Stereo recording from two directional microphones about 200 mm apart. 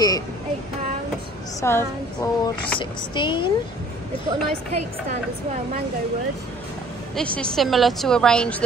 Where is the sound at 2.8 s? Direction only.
25° left (ahead or behind).